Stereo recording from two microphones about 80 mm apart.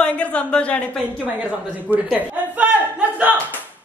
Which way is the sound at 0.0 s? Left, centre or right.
Centre.